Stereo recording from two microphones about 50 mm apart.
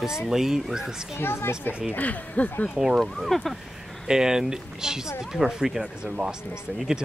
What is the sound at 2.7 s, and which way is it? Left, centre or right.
Speech, centre.